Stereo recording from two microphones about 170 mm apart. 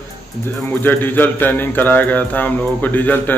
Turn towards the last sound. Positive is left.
turn(degrees=10)  # may be behind; listen again after turning